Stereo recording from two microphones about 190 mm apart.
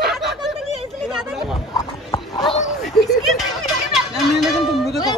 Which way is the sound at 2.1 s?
25° left (ahead or behind).